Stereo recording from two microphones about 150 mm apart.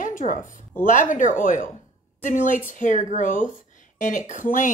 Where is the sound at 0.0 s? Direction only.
60° left (ahead or behind).